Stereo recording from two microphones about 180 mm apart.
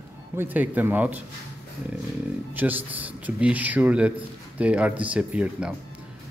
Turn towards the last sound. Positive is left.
turn(degrees=-5)  # may be behind; listen again after turning